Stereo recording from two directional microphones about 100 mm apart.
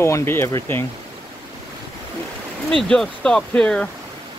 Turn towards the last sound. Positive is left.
turn(degrees=10)  # may be behind; listen again after turning